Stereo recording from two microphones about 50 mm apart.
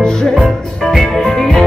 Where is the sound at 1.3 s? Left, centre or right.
Centre.